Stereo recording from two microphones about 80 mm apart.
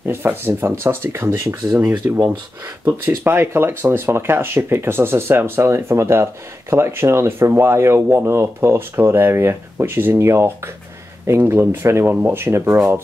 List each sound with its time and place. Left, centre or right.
0.0 s speech: right